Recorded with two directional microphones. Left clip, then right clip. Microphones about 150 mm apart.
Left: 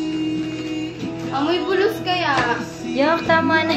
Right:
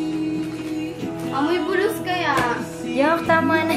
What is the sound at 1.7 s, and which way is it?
Music, 15° left (ahead or behind).